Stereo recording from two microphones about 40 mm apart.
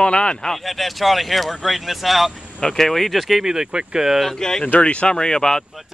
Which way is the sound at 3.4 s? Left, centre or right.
Centre.